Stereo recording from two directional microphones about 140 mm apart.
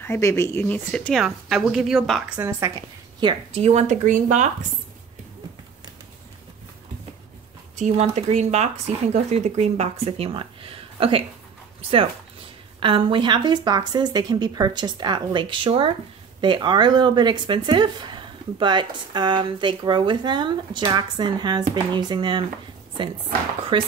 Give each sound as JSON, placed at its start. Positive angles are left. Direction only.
{"t": 0.0, "sound": "a woman's voice", "side_deg": 20}
{"t": 2.3, "sound": "a woman's voice", "side_deg": -20}
{"t": 3.2, "sound": "speech", "side_deg": -35}
{"t": 3.6, "sound": "speech", "side_deg": -55}
{"t": 7.7, "sound": "speech", "side_deg": -55}
{"t": 12.8, "sound": "speech", "side_deg": -35}
{"t": 23.7, "sound": "speech", "side_deg": -40}